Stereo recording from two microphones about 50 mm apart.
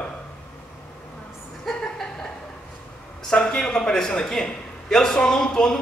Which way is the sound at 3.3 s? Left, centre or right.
Centre.